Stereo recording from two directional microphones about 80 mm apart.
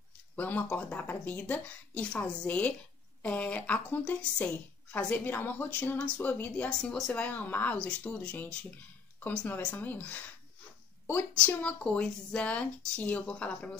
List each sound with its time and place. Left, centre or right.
0.4 s a woman's voice: centre
11.4 s a woman's voice: centre